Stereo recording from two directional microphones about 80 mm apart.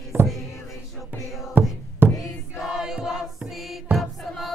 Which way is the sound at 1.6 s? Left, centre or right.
Right.